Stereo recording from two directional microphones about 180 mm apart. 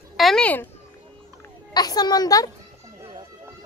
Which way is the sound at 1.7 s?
20° left (ahead or behind).